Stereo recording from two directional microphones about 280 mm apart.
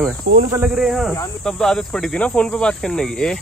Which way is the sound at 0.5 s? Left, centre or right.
Centre.